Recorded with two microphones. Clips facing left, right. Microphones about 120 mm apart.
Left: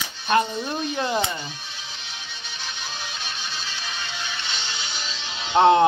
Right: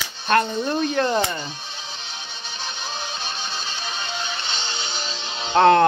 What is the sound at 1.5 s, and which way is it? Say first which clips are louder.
Music: right 3 dB; 30° right (ahead or behind).